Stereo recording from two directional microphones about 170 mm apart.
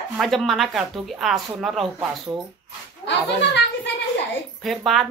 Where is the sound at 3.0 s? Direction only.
90° left.